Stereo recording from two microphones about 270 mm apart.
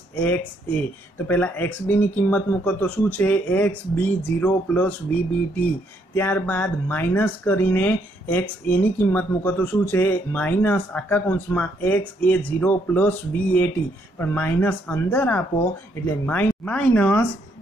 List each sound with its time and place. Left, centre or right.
0.1 s speech: centre
6.1 s speech: centre